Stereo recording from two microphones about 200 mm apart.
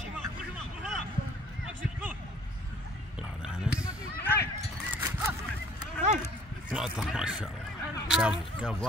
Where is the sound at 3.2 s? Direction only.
5° right (ahead or behind).